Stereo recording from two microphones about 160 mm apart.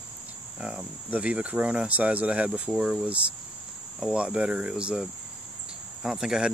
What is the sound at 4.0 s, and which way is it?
Cricket, 5° right (ahead or behind).